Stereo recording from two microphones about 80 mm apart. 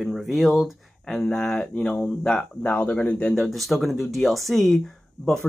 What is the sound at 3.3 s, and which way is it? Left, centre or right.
Speech, centre.